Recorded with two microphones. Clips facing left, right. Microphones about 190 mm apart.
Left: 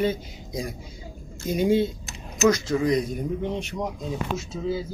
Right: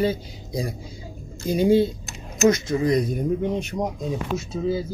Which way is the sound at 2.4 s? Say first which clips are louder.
Right 2 dB; 20° right (ahead or behind).